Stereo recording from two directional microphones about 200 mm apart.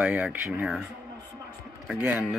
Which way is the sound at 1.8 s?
5° right (ahead or behind).